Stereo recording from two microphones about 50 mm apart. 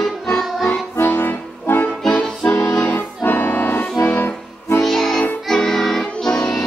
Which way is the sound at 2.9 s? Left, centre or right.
Left.